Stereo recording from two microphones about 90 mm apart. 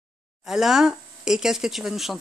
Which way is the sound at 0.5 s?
5° right (ahead or behind).